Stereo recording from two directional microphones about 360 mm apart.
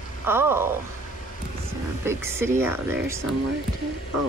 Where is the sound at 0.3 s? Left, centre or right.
Centre.